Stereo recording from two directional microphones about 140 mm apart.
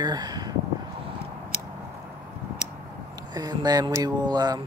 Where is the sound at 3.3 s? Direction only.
30° right (ahead or behind).